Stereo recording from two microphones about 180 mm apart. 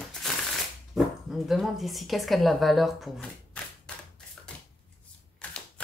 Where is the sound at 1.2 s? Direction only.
Centre (ahead or behind).